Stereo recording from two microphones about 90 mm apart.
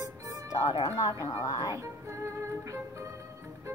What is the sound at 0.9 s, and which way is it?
Speech, 40° left (ahead or behind).